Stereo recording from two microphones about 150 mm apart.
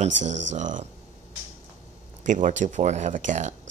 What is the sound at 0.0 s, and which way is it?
Speech, 55° right (ahead or behind).